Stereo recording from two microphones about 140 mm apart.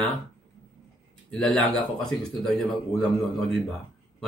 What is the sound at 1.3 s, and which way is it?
A man's voice, 5° left (ahead or behind).